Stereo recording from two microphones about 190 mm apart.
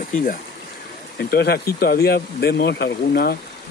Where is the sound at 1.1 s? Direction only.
55° left (ahead or behind).